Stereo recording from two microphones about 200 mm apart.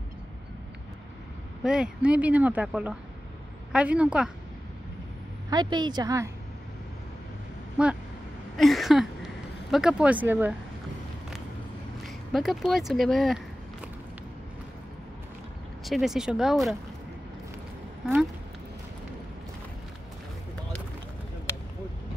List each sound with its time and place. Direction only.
1.6 s speech: 5° right (ahead or behind)
5.5 s a woman's voice: 20° right (ahead or behind)
7.7 s speech: 5° right (ahead or behind)
8.5 s a sound: centre (ahead or behind)
12.3 s speech: centre (ahead or behind)
15.8 s speech: centre (ahead or behind)
21.5 s a sound: 15° left (ahead or behind)